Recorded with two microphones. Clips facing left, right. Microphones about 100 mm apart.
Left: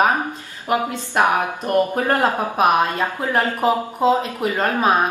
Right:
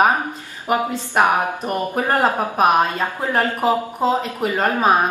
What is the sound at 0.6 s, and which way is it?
Speech, 15° right (ahead or behind).